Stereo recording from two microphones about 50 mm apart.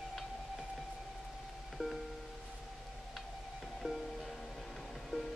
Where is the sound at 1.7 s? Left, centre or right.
Centre.